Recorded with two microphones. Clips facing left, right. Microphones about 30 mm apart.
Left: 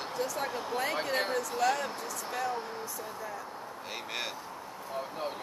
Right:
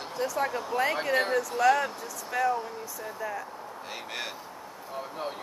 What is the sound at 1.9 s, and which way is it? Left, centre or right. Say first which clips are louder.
Speech: right 1 dB; centre.